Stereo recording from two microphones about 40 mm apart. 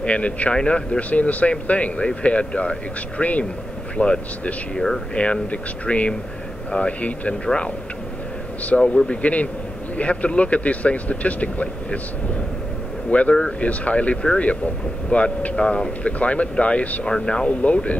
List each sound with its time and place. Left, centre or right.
0.0 s speech: left
0.9 s speech: left
4.7 s speech: centre
5.1 s speech: left
8.8 s speech: left
13.1 s speech: left
17.0 s speech: left
17.5 s speech: left